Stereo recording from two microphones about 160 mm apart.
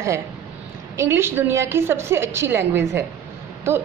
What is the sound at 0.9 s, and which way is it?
A woman's voice, 15° right (ahead or behind).